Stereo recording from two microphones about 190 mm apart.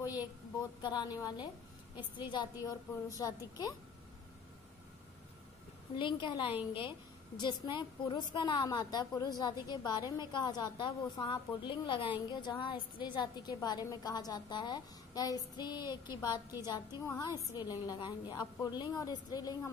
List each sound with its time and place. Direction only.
0.8 s a woman's voice: 20° left (ahead or behind)
5.9 s a woman's voice: 25° left (ahead or behind)